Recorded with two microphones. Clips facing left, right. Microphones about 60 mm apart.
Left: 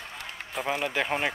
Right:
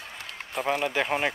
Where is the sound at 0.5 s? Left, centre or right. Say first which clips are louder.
Right 2 dB; centre.